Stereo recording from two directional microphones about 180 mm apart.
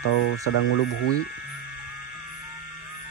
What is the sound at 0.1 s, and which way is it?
Speech, 65° left (ahead or behind).